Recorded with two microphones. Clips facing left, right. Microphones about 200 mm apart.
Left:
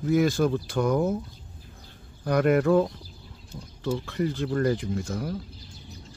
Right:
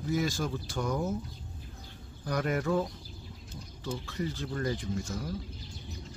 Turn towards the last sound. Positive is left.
turn(degrees=60)  # may be behind; listen again after turning